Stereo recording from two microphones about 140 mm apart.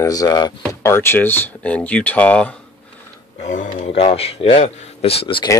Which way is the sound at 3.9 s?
45° left (ahead or behind).